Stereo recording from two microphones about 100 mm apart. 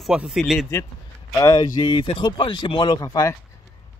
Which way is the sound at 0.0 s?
5° right (ahead or behind).